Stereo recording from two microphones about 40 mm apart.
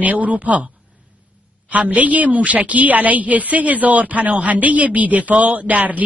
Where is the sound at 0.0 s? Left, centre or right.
Right.